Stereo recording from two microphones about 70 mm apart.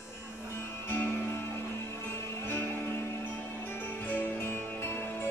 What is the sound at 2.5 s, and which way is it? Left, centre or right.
Music, left.